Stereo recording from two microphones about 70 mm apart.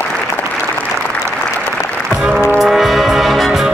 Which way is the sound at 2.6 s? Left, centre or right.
Centre.